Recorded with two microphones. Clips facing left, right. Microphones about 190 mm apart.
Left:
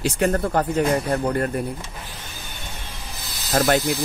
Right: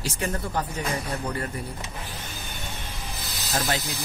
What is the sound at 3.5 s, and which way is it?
Speech, 55° left (ahead or behind).